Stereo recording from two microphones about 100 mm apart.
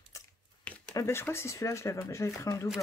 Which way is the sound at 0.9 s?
25° left (ahead or behind).